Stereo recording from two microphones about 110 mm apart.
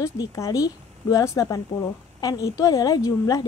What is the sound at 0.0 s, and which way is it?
A woman's voice, 30° left (ahead or behind).